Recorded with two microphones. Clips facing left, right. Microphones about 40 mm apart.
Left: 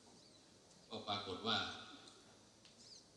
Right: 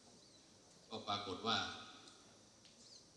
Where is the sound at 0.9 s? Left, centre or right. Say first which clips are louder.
Right 1 dB; left.